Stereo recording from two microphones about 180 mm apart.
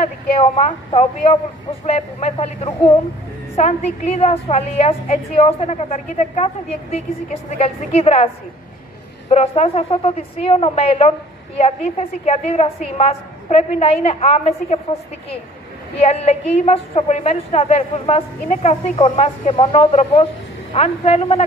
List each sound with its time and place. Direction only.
0.0 s a woman's voice: 35° left (ahead or behind)
9.3 s a woman's voice: 35° left (ahead or behind)